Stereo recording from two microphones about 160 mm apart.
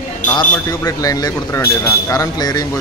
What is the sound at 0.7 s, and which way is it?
A man's voice, 20° left (ahead or behind).